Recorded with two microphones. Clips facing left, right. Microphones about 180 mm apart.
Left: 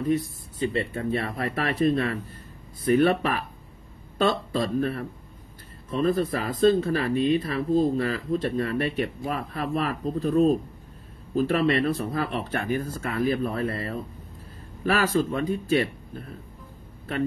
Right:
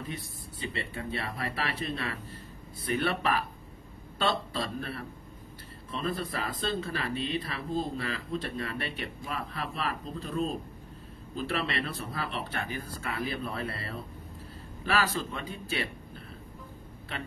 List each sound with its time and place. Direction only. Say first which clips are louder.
0.1 s speech: left 15 dB; 45° left (ahead or behind)